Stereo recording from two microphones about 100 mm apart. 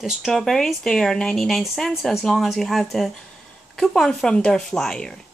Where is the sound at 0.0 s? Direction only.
Centre (ahead or behind).